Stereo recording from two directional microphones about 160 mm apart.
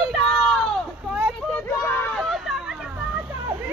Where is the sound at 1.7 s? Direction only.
15° left (ahead or behind).